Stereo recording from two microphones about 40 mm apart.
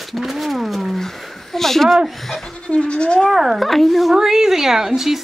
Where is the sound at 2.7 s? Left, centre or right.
Left.